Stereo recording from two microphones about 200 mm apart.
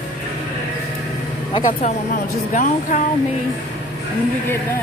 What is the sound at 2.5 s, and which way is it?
Speech, 40° left (ahead or behind).